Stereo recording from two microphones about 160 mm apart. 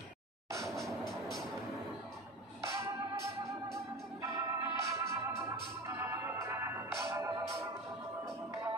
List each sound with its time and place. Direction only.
0.5 s vehicle: 20° right (ahead or behind)
2.6 s music: 20° right (ahead or behind)
3.6 s organ: 20° right (ahead or behind)